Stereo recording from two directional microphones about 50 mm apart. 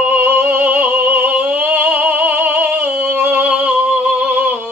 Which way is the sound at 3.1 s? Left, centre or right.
Right.